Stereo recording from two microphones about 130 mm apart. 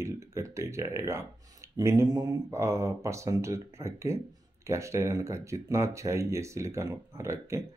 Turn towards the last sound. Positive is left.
turn(degrees=-20)  # may be behind; listen again after turning